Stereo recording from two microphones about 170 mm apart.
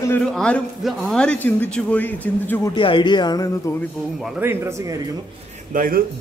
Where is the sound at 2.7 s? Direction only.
30° left (ahead or behind).